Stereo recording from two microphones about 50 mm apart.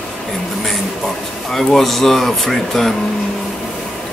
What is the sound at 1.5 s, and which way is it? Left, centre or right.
Speech, centre.